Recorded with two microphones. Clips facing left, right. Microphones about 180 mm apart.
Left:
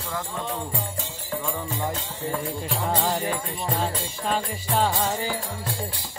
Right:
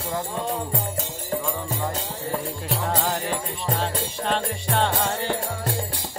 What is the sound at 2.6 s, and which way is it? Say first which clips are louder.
Music: even; centre (ahead or behind).